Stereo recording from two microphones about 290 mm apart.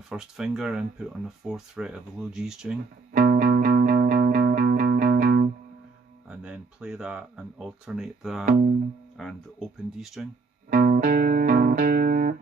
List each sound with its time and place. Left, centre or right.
0.1 s speech: centre
3.1 s music: right
6.2 s speech: centre
8.5 s speech: right
9.1 s speech: centre
10.7 s music: right